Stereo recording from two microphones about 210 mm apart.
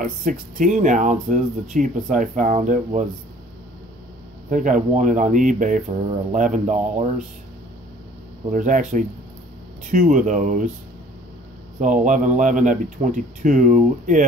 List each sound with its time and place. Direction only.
0.0 s speech: 40° right (ahead or behind)
4.5 s speech: 40° right (ahead or behind)
8.5 s speech: 40° right (ahead or behind)
11.8 s speech: 35° right (ahead or behind)